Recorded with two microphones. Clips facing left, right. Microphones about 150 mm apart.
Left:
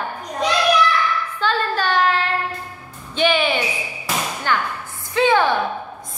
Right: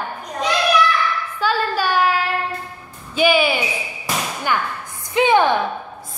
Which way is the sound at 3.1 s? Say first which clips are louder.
Right 2 dB; 10° right (ahead or behind).